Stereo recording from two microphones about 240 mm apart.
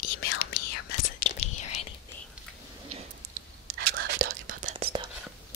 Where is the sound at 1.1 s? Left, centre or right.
Left.